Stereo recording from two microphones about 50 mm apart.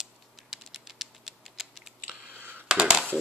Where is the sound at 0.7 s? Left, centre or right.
Centre.